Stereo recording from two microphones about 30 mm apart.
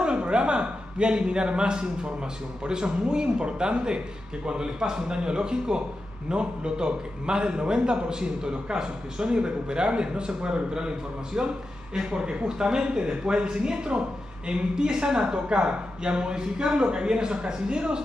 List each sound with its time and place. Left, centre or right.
0.0 s a sound: right
2.6 s a man's voice: right
11.9 s a man's voice: right